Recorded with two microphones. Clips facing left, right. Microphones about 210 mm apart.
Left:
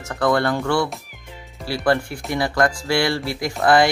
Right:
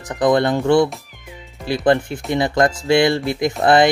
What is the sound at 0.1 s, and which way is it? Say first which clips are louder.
Speech: right 4 dB; 20° right (ahead or behind).